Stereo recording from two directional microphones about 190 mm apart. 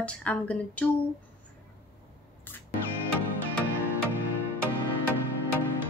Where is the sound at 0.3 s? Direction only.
5° left (ahead or behind).